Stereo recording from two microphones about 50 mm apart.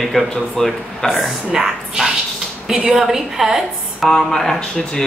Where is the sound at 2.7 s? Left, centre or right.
Centre.